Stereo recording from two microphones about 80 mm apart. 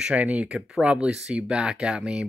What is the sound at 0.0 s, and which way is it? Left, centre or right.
Speech, centre.